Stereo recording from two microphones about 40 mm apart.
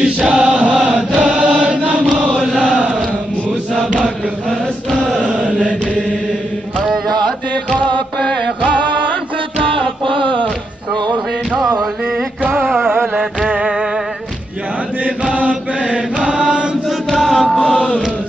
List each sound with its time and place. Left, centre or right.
0.0 s chant: right
5.2 s mantra: right
13.5 s music: right
15.0 s chant: right
15.9 s mantra: right
17.1 s chant: centre
17.5 s music: left